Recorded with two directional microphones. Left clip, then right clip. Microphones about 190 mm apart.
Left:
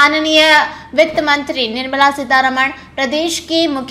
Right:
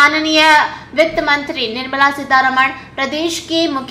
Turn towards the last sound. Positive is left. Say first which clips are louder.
# left 1 dB
turn(degrees=30)  # may be behind; listen again after turning